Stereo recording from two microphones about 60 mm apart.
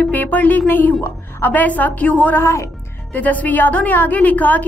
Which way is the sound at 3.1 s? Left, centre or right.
Left.